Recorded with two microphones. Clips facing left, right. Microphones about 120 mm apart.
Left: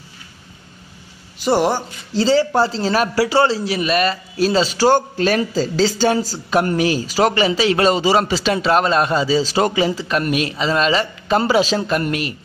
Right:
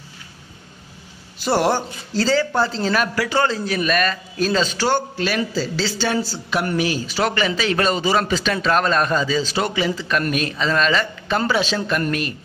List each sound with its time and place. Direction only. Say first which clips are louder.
1.4 s a man's voice: left 2 dB; 15° left (ahead or behind)
2.1 s a man's voice: left 3 dB; 30° left (ahead or behind)
10.2 s a man's voice: left 2 dB; 15° left (ahead or behind); by 12.0 s 35° left (ahead or behind)